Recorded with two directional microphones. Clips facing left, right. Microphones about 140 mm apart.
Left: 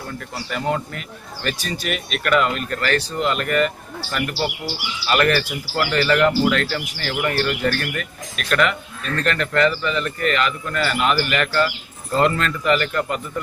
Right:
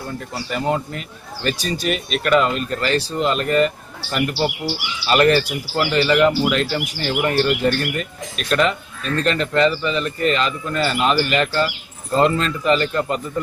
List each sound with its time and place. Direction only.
0.5 s speech: 20° right (ahead or behind)